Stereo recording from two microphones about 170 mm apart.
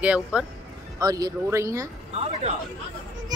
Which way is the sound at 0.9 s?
20° right (ahead or behind).